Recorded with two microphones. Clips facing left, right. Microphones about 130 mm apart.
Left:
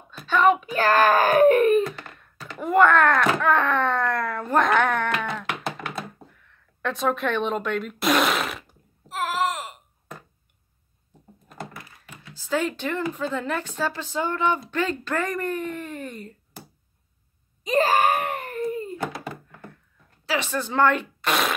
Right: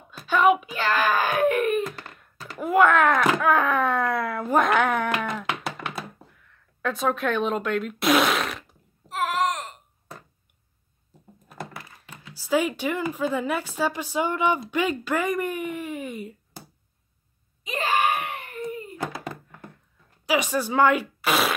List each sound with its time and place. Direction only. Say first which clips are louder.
0.3 s a child's voice: even; 10° right (ahead or behind)
0.7 s speech: left 5 dB; 40° left (ahead or behind)
2.1 s speech: right 1 dB; 5° right (ahead or behind)
5.2 s a sound: even; centre (ahead or behind)
12.4 s speech: right 2 dB; 10° right (ahead or behind)
17.6 s wail: left 4 dB; 40° left (ahead or behind)
20.2 s speech: right 3 dB; 15° right (ahead or behind)